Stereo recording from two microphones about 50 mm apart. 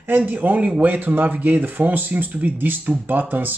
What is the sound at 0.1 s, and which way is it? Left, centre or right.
Speech, right.